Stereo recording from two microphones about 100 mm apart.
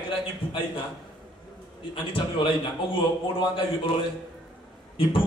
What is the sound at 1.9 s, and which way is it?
A man's voice, 60° left (ahead or behind).